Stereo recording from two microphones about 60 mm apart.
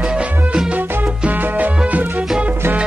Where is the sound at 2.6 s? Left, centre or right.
Right.